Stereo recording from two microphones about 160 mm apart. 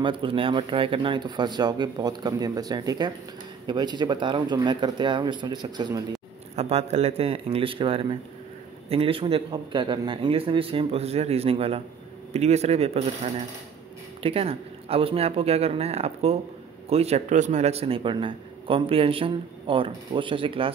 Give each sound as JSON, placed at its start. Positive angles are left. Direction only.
{"t": 0.0, "sound": "speech", "side_deg": -30}
{"t": 6.5, "sound": "a man's voice", "side_deg": -40}